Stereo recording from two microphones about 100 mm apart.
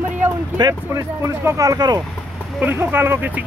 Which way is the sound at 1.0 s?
30° right (ahead or behind).